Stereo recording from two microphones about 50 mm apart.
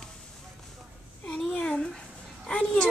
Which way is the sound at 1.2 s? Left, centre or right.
Left.